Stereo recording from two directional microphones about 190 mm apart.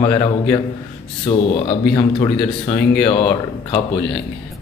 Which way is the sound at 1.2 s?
30° left (ahead or behind).